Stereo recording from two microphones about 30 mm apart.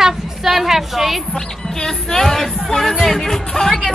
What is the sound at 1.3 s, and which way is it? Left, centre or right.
Speech, centre.